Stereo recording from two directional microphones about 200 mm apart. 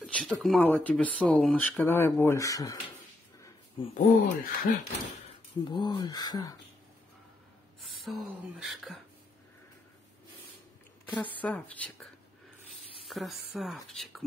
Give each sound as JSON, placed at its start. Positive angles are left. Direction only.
{"t": 0.0, "sound": "speech", "side_deg": 5}
{"t": 3.9, "sound": "gasp", "side_deg": 45}
{"t": 5.7, "sound": "speech", "side_deg": 25}
{"t": 7.8, "sound": "speech", "side_deg": 0}
{"t": 11.1, "sound": "speech", "side_deg": 10}
{"t": 13.1, "sound": "speech", "side_deg": 0}